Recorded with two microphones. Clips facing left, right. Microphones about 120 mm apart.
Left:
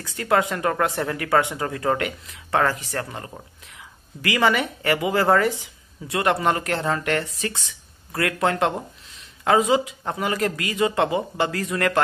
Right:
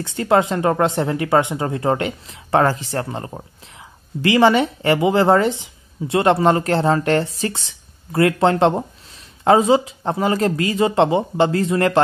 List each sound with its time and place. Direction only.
0.0 s a woman's voice: 25° right (ahead or behind)